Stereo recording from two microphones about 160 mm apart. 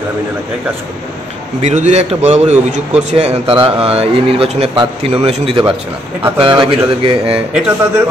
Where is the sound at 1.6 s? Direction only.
45° right (ahead or behind); by 7.4 s 30° right (ahead or behind).